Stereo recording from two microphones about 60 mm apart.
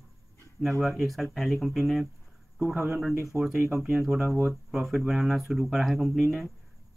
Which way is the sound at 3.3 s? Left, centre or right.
Left.